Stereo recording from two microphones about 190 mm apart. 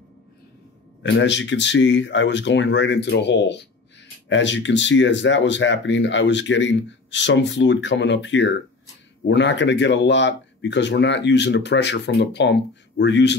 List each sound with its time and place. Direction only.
1.0 s speech: 70° left (ahead or behind)